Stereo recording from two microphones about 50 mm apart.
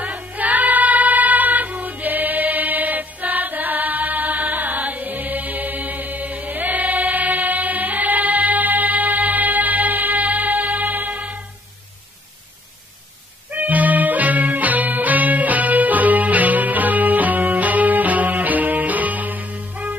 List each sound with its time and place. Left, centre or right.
0.2 s choir: right
13.5 s music: right